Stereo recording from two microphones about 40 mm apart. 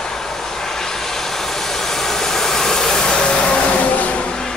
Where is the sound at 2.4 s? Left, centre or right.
Centre.